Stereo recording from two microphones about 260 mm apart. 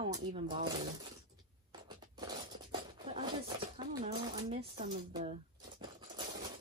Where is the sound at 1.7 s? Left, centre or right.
Centre.